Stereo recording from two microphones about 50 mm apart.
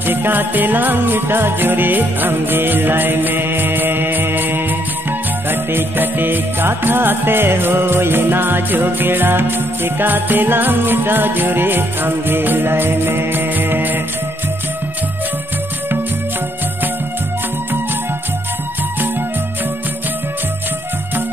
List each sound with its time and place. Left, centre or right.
0.0 s jingle bell: right
5.5 s music: right